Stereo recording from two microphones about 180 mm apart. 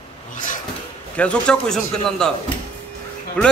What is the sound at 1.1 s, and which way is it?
A man's voice, 5° left (ahead or behind).